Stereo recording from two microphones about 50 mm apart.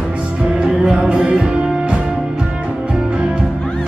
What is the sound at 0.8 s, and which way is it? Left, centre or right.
Music, centre.